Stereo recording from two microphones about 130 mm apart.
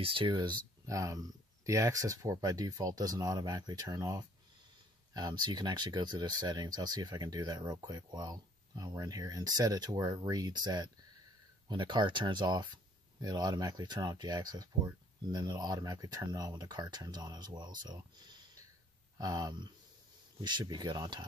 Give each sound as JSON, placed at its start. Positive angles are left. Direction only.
{"t": 0.0, "sound": "speech", "side_deg": -40}